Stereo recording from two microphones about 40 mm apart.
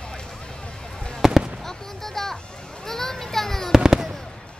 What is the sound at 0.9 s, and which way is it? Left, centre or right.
Fireworks, centre.